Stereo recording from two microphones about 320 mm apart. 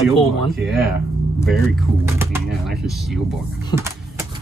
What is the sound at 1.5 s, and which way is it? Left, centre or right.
Speech, centre.